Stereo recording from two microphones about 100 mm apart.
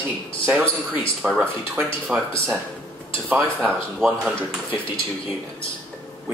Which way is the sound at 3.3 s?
15° right (ahead or behind).